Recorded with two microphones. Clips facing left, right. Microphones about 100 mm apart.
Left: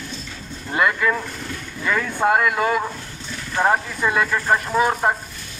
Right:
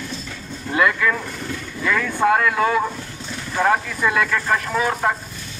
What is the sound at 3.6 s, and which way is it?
Speech, 25° left (ahead or behind).